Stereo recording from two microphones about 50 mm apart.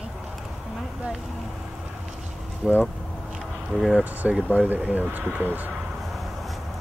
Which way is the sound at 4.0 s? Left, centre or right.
Right.